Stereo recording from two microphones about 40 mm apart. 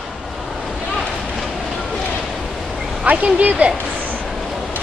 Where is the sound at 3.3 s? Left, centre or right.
Right.